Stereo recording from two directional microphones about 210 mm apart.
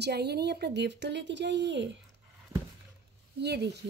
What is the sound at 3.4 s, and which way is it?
Speech, 50° right (ahead or behind).